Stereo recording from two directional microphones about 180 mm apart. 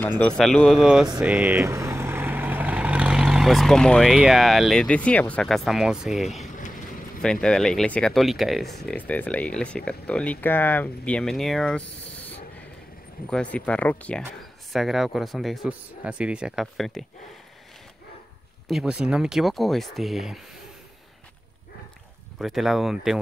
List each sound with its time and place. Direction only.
0.2 s speech: 5° left (ahead or behind)
6.4 s vehicle: 45° left (ahead or behind)
7.2 s speech: 5° left (ahead or behind)
18.7 s speech: 5° right (ahead or behind)
22.4 s speech: centre (ahead or behind)